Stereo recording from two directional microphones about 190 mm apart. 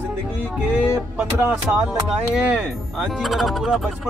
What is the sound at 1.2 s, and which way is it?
Speech, 5° right (ahead or behind).